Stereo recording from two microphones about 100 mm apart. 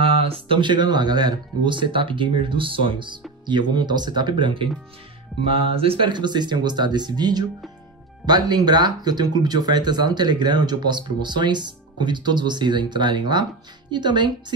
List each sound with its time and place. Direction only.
0.0 s speech: 70° right (ahead or behind)
5.5 s speech: 70° right (ahead or behind); by 14.3 s 50° right (ahead or behind)